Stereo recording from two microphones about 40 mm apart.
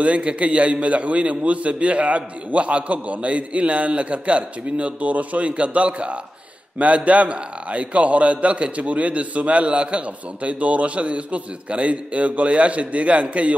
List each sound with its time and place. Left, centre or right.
0.0 s a man's voice: right